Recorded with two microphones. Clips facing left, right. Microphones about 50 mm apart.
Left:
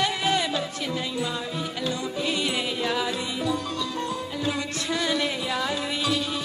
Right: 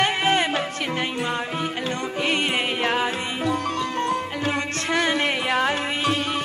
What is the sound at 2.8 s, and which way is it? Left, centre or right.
Music, right.